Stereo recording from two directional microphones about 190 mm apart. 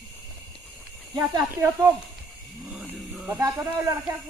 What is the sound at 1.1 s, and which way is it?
Speech, 15° right (ahead or behind).